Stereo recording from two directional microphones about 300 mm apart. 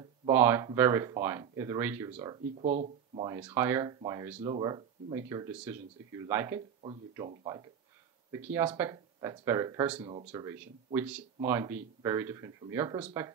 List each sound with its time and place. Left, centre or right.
0.3 s speech: centre
2.1 s speech: centre
3.3 s speech: centre